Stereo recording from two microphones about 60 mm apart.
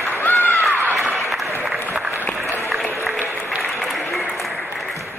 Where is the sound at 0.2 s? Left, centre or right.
Left.